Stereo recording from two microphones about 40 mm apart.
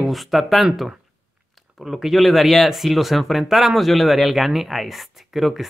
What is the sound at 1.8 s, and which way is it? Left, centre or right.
Speech, centre.